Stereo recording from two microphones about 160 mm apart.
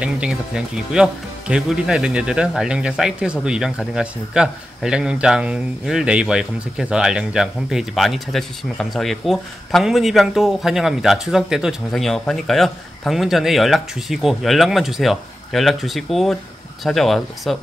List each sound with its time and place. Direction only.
0.0 s speech: 5° right (ahead or behind)